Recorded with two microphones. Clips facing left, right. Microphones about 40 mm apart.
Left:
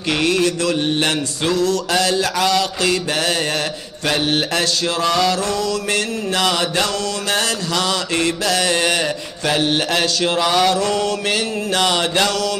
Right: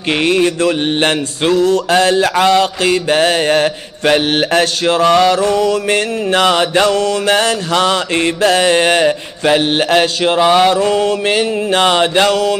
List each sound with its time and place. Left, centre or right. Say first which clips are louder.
0.2 s mantra: right 5 dB; right